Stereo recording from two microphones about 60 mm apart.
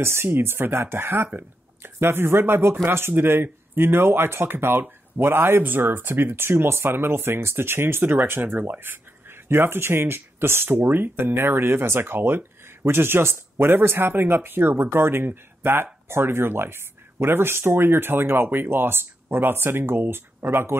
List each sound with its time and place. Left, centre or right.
0.0 s speech: right